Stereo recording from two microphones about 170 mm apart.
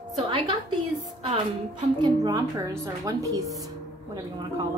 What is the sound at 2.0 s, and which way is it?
A woman's voice, 20° right (ahead or behind).